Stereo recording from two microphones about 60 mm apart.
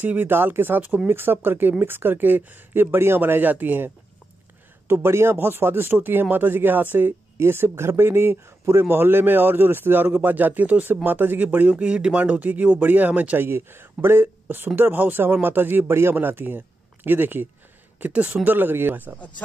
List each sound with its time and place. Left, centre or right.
0.0 s speech: right
4.8 s speech: right
7.3 s speech: right
13.5 s speech: right
18.0 s speech: right